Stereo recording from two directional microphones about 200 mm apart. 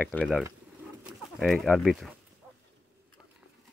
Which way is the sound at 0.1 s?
5° left (ahead or behind).